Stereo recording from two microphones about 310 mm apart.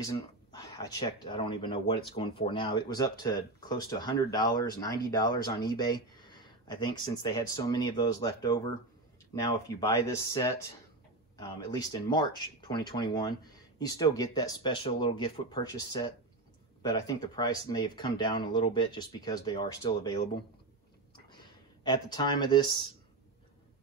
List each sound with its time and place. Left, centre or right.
0.0 s speech: centre
21.3 s speech: centre